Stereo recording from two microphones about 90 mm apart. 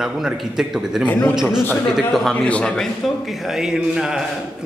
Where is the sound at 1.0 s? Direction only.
20° left (ahead or behind).